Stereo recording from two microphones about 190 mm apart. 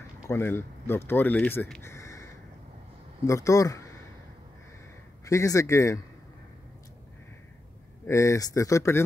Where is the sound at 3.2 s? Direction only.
15° left (ahead or behind).